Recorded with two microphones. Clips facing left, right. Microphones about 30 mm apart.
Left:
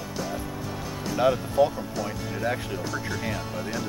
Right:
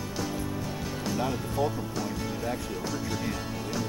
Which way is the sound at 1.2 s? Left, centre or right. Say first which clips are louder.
Left 10 dB; left.